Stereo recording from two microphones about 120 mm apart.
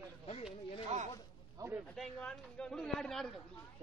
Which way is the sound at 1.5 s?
20° right (ahead or behind).